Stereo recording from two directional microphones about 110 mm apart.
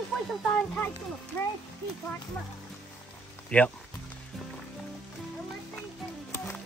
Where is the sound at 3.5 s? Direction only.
10° left (ahead or behind).